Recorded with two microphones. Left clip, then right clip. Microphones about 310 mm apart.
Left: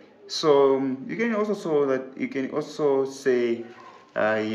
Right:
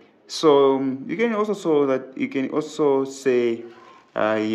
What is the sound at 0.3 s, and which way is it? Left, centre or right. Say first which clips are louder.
Speech: right 3 dB; right.